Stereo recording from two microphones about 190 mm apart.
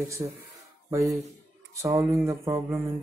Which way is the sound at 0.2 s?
20° right (ahead or behind).